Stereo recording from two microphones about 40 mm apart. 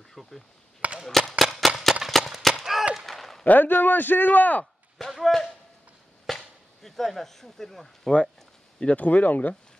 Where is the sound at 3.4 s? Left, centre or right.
Left.